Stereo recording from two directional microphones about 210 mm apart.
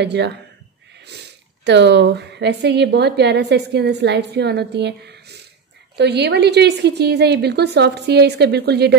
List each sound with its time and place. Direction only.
0.0 s a woman's voice: 55° right (ahead or behind)